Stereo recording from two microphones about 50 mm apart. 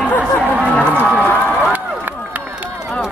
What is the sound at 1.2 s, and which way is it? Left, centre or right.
Run, left.